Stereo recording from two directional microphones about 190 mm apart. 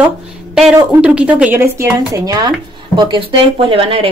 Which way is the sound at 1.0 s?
5° right (ahead or behind).